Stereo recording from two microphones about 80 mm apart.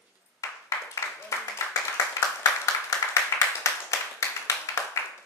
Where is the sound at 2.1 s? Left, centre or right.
Left.